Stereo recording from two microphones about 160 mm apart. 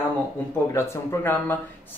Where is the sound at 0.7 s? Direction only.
15° left (ahead or behind).